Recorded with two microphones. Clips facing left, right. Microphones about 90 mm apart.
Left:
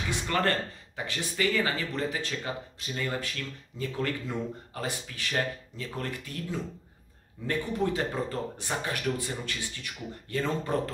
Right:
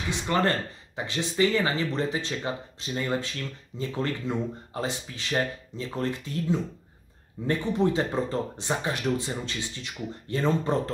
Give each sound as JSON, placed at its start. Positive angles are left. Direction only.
{"t": 0.1, "sound": "speech", "side_deg": -20}